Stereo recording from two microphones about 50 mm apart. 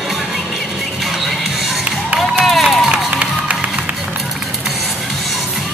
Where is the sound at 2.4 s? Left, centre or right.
Centre.